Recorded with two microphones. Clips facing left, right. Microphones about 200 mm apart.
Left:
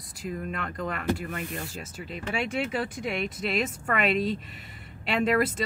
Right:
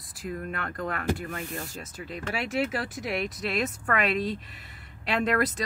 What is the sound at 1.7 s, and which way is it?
Speech, centre (ahead or behind).